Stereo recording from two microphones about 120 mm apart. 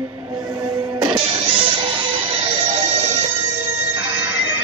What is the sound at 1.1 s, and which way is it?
Music, 55° right (ahead or behind).